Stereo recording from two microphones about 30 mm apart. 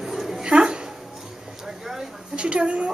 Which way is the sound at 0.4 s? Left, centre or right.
Right.